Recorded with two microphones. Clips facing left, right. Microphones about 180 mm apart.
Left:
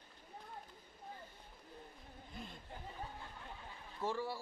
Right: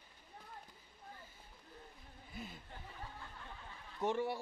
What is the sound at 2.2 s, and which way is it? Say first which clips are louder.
Snicker: right 2 dB; 5° right (ahead or behind).